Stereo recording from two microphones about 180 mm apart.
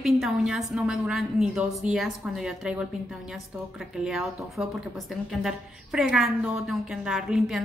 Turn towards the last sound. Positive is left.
turn(degrees=-5)  # may be behind; listen again after turning